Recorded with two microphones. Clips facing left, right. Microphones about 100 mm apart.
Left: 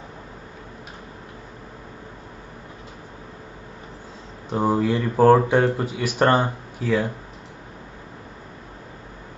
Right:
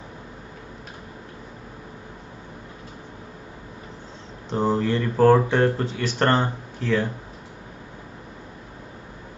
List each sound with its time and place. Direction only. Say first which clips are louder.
4.5 s speech: left 1 dB; 10° left (ahead or behind)